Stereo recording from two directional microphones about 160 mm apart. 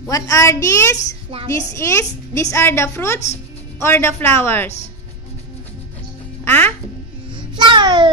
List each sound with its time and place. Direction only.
0.1 s a woman's voice: 20° left (ahead or behind)
6.4 s music: 15° left (ahead or behind)
7.3 s child singing: 30° right (ahead or behind)